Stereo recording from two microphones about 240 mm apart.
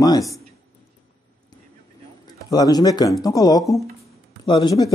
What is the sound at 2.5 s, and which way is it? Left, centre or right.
Speech, centre.